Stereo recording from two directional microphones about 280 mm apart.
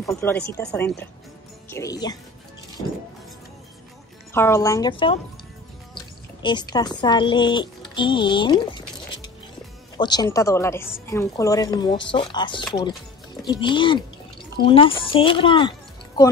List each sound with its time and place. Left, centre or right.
0.0 s speech: centre
4.3 s speech: centre
6.4 s speech: centre